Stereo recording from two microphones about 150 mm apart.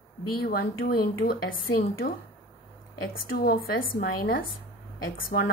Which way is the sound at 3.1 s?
75° left (ahead or behind).